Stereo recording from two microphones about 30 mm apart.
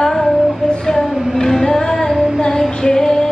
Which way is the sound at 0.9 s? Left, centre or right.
Left.